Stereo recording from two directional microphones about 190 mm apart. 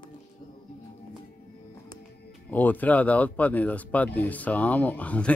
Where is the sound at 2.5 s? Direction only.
10° left (ahead or behind).